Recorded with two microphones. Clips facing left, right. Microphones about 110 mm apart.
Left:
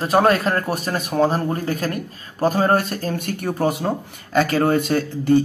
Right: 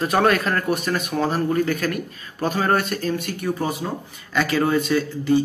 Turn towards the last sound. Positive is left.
turn(degrees=55)  # may be behind; listen again after turning